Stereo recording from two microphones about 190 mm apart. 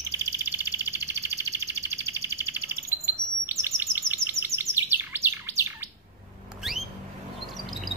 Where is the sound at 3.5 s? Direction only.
10° right (ahead or behind).